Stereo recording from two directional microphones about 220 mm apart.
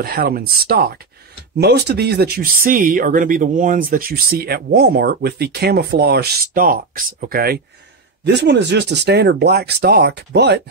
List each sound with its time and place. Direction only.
0.0 s speech: 45° right (ahead or behind)